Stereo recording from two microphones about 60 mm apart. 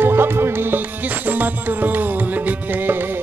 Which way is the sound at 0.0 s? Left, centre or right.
Right.